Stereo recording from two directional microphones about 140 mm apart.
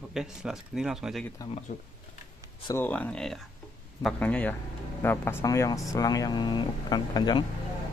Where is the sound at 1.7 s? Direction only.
70° left (ahead or behind).